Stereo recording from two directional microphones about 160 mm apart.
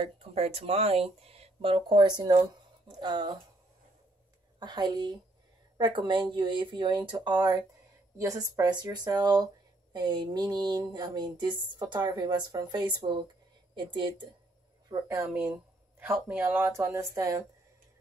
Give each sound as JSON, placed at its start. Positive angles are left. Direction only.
{"t": 0.0, "sound": "speech", "side_deg": -40}
{"t": 4.6, "sound": "a sound", "side_deg": -25}
{"t": 13.8, "sound": "speech", "side_deg": -30}
{"t": 14.9, "sound": "speech", "side_deg": -20}